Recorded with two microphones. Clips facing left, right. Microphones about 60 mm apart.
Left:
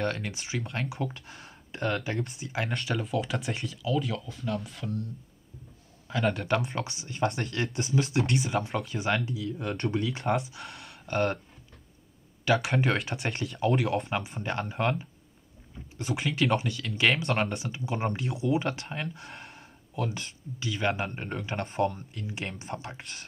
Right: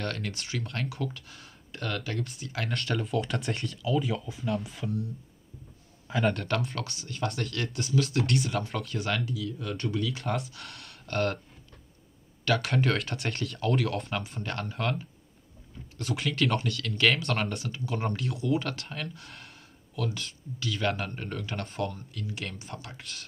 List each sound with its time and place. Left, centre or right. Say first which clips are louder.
0.0 s speech: left 3 dB; centre
2.7 s speech: right 3 dB; centre
6.0 s a sound: right 1 dB; centre
6.3 s speech: left 2 dB; centre
8.2 s speech: left 1 dB; centre
9.1 s speech: left 3 dB; left
10.6 s speech: left 2 dB; centre
12.6 s speech: even; centre
20.0 s speech: left 1 dB; left
21.7 s speech: left 7 dB; left